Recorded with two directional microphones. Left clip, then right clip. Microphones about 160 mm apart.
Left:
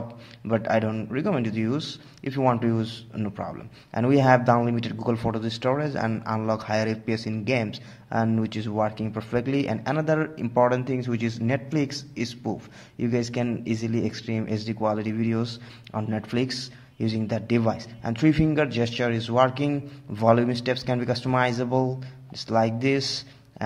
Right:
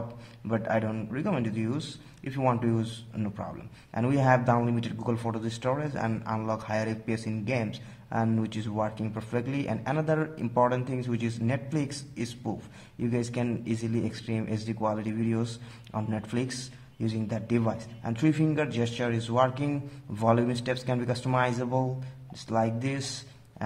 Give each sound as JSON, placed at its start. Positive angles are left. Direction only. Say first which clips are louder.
{"t": 0.5, "sound": "speech", "louder": "left 5 dB", "side_deg": 25}